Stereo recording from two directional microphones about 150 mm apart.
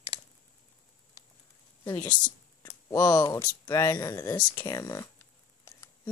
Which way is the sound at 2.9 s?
25° left (ahead or behind).